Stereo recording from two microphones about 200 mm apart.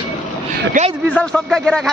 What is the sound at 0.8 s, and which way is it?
Speech, 40° right (ahead or behind).